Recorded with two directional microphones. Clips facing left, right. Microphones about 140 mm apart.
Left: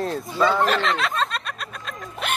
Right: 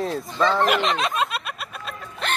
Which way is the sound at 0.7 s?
15° right (ahead or behind).